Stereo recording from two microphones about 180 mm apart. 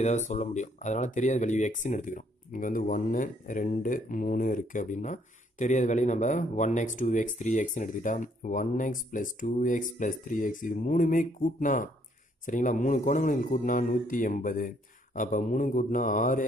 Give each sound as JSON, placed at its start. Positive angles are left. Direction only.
{"t": 0.0, "sound": "speech", "side_deg": 40}